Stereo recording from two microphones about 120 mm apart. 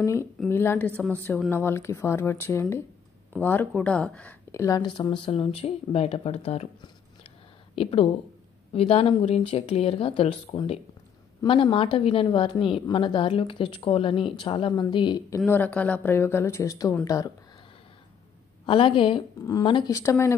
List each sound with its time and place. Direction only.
0.0 s a woman's voice: 25° left (ahead or behind)
4.7 s speech: 40° left (ahead or behind); by 6.7 s 60° left (ahead or behind)
7.7 s speech: 50° left (ahead or behind)
15.2 s a woman's voice: 20° left (ahead or behind)
18.7 s speech: 45° left (ahead or behind)
19.3 s a woman's voice: 30° left (ahead or behind)